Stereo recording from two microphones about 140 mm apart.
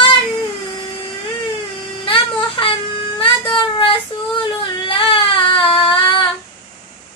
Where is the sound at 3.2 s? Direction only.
40° left (ahead or behind).